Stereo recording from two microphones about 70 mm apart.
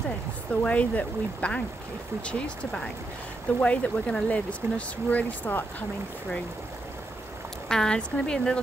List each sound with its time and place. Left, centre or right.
0.6 s speech: left
7.6 s speech: centre